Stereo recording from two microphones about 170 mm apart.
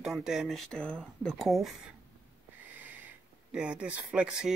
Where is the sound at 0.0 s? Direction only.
5° right (ahead or behind).